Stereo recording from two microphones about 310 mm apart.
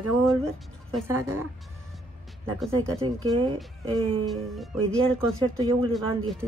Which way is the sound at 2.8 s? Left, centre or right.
Centre.